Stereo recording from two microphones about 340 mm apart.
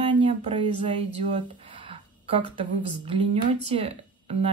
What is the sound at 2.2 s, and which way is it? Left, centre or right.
Speech, centre.